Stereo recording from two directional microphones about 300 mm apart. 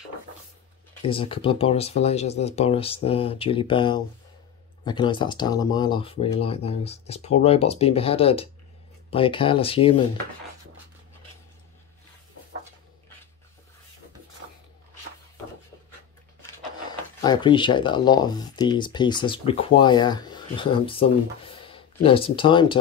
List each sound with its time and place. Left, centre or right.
1.0 s speech: centre
17.2 s speech: centre
21.5 s a sound: centre
22.0 s speech: centre